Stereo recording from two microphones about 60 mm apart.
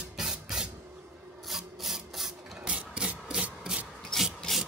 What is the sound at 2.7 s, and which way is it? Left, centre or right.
Wood, centre.